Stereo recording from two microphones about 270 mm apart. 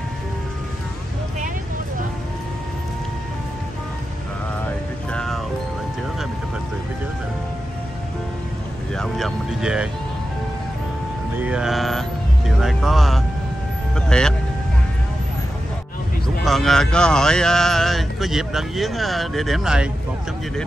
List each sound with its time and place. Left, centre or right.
5.1 s music: centre
8.9 s vehicle: centre
11.4 s music: centre
13.9 s vehicle: centre
16.4 s speech: centre